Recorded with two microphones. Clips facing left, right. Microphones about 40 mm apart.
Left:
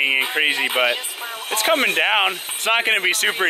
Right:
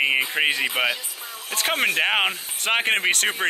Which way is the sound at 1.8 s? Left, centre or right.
Left.